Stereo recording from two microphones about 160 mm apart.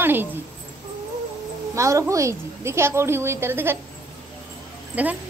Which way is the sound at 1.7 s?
20° right (ahead or behind).